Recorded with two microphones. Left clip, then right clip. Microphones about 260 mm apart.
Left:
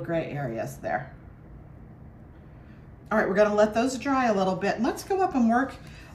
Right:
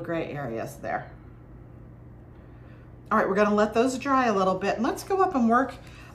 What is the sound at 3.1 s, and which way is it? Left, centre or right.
Speech, centre.